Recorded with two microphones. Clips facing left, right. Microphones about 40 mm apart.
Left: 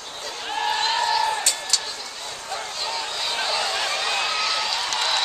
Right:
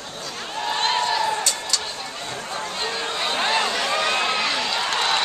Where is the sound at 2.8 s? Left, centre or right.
Right.